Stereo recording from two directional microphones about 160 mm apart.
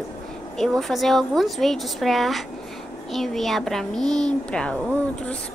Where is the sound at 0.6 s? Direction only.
Centre (ahead or behind).